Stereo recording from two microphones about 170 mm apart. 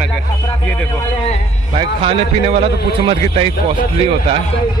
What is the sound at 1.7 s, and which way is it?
A man's voice, 35° right (ahead or behind).